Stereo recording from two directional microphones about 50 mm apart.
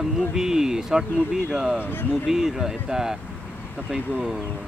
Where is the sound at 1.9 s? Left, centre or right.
Left.